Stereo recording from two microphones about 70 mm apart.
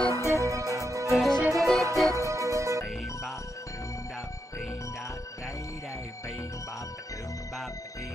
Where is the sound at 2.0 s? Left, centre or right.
Left.